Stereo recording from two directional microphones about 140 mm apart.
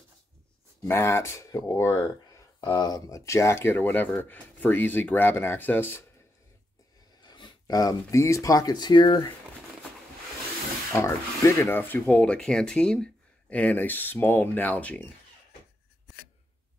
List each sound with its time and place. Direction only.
0.8 s speech: 20° left (ahead or behind)
7.2 s speech: 30° left (ahead or behind)
10.9 s speech: 20° left (ahead or behind)